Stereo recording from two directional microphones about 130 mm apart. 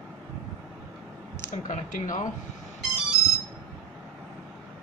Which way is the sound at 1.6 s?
75° left (ahead or behind).